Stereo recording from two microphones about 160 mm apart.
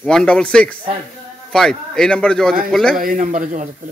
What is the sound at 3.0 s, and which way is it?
Speech, 55° right (ahead or behind).